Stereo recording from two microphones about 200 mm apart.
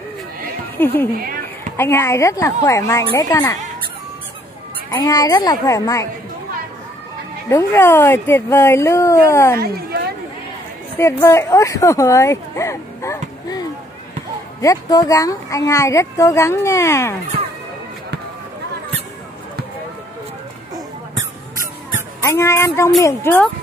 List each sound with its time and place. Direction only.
0.7 s speech: 10° left (ahead or behind)
1.1 s a woman's voice: 45° right (ahead or behind)
1.8 s speech: 15° left (ahead or behind)
4.9 s speech: 20° left (ahead or behind)
7.4 s speech: 15° left (ahead or behind)
9.6 s a sound: 50° right (ahead or behind)
11.0 s speech: 15° left (ahead or behind)
22.2 s speech: 15° left (ahead or behind)